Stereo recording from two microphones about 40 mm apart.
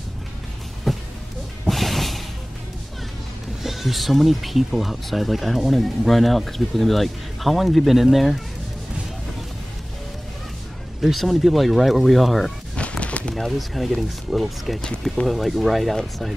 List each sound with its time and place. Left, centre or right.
0.9 s music: centre
3.6 s speech: centre
11.0 s speech: centre
12.7 s a sound: left
13.3 s speech: centre